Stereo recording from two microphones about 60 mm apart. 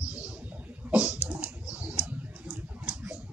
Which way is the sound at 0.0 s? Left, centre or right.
Right.